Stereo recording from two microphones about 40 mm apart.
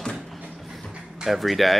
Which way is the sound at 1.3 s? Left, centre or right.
Centre.